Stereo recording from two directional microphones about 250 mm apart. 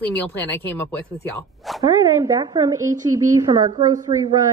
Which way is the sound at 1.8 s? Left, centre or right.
Centre.